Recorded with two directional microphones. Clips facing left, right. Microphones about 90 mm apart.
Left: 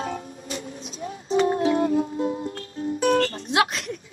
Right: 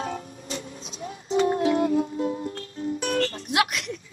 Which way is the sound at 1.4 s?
30° left (ahead or behind).